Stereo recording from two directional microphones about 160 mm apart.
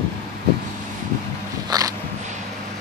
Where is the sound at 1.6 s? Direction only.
25° right (ahead or behind).